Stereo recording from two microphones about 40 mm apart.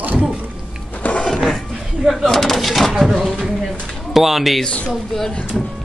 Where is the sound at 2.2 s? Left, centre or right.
Centre.